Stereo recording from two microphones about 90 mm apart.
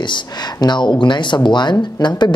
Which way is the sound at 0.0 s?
55° left (ahead or behind).